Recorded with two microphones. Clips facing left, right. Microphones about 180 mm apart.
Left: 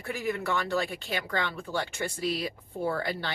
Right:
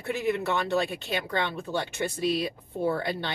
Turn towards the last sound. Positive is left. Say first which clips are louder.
# right 3 dB
turn(degrees=-20)  # may be behind; listen again after turning